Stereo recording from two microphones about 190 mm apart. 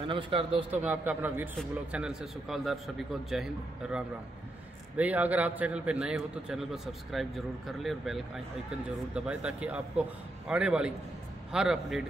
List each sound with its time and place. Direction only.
0.0 s a man's voice: 25° right (ahead or behind)
0.7 s a man's voice: 10° right (ahead or behind)
4.9 s a man's voice: 10° right (ahead or behind)